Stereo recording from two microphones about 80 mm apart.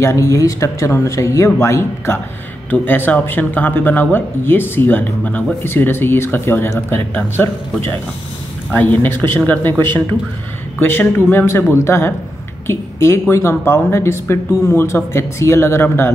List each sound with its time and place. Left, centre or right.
0.0 s speech: left